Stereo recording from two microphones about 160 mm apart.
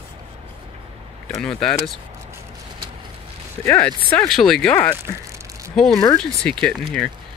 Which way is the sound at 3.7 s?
10° left (ahead or behind).